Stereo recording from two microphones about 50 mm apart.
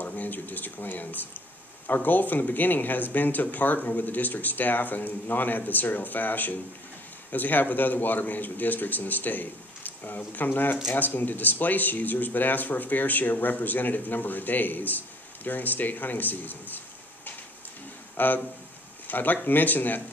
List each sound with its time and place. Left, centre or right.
0.0 s a man's voice: left